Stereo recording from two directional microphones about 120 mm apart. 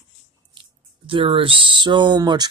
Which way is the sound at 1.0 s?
45° right (ahead or behind).